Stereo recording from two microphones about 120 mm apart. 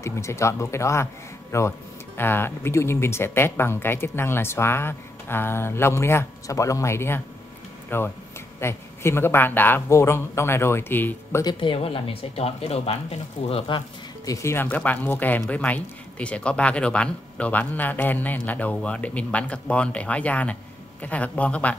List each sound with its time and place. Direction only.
0.0 s speech: 25° left (ahead or behind)
11.4 s speech: 45° left (ahead or behind)
14.2 s speech: 25° left (ahead or behind)